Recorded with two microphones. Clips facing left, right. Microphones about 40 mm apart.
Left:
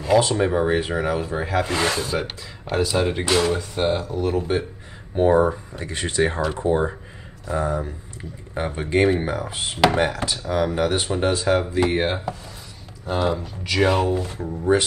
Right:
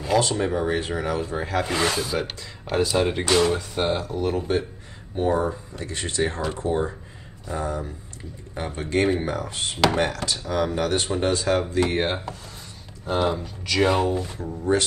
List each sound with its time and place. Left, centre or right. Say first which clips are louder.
0.0 s speech: left 4 dB; centre
5.2 s speech: left 6 dB; left